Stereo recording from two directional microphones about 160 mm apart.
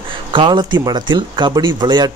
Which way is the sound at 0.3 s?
30° right (ahead or behind).